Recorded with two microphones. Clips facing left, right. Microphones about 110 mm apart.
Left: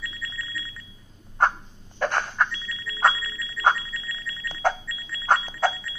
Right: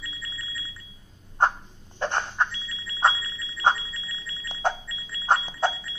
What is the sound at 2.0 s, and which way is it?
Alarm, 25° right (ahead or behind).